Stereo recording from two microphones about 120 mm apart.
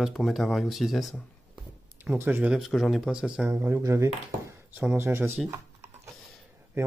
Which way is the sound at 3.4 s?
20° right (ahead or behind).